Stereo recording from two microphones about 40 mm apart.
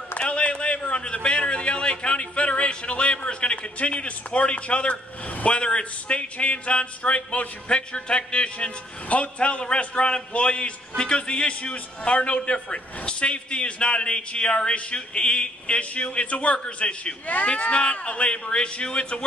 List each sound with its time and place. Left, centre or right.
0.2 s a man's voice: left
16.5 s speech: left
17.0 s speech: left